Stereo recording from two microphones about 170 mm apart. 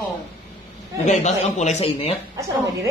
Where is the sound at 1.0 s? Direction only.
40° left (ahead or behind).